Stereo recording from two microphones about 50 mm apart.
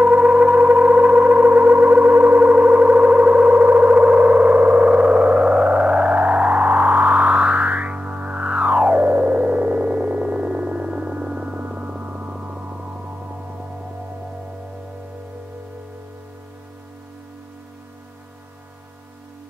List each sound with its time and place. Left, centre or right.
0.0 s music: right
2.9 s synthesizer: right
3.6 s gong: right
11.5 s hum: right